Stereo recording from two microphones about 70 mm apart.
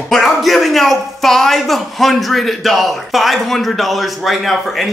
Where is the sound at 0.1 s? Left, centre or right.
Centre.